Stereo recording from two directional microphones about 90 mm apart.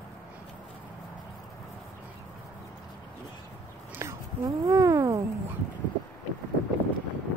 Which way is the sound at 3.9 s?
35° right (ahead or behind).